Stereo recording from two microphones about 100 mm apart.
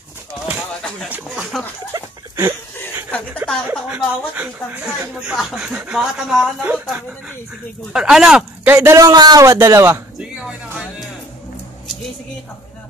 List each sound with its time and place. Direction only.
1.0 s speech: 15° right (ahead or behind)
1.9 s a sound: 35° right (ahead or behind)
3.4 s a sound: 20° right (ahead or behind)
4.8 s speech: 5° right (ahead or behind)
6.6 s speech: 15° right (ahead or behind)
8.7 s a man's voice: 35° right (ahead or behind)
9.6 s speech: 25° right (ahead or behind)
10.3 s music: 10° right (ahead or behind)